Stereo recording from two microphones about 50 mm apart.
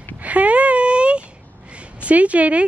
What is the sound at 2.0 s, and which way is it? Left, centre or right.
Speech, right.